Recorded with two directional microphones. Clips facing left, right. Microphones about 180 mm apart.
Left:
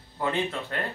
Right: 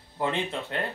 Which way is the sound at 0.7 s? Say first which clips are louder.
Right 2 dB; 25° right (ahead or behind).